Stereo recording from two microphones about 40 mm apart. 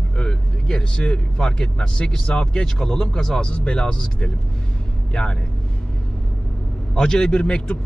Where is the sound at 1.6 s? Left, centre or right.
Left.